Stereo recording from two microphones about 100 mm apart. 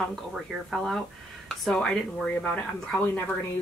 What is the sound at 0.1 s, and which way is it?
Speech, 5° right (ahead or behind).